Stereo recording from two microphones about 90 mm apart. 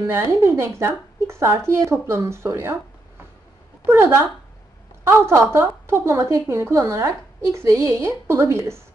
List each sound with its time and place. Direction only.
0.0 s a woman's voice: 30° right (ahead or behind)
3.8 s a woman's voice: 30° right (ahead or behind)